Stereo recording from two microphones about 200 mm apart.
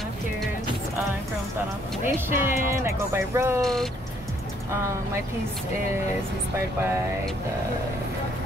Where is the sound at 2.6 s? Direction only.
15° right (ahead or behind).